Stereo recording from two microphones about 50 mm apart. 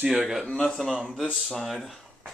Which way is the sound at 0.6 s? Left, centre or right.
Centre.